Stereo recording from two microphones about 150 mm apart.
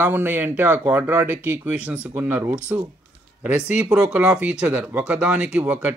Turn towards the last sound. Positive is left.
turn(degrees=-10)  # may be behind; listen again after turning